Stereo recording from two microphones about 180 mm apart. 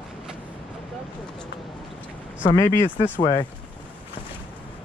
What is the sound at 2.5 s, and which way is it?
Speech, 15° left (ahead or behind).